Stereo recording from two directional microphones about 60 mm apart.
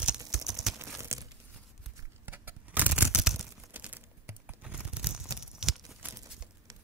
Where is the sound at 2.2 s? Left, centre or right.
Right.